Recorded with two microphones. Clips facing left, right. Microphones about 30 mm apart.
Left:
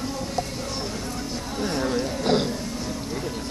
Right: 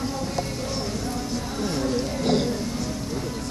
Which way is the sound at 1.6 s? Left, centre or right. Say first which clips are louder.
Left 1 dB; centre.